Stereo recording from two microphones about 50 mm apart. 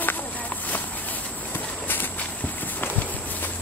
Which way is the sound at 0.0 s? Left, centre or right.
Left.